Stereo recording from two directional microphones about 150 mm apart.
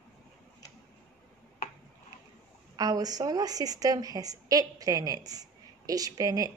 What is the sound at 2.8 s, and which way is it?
A woman's voice, 25° right (ahead or behind).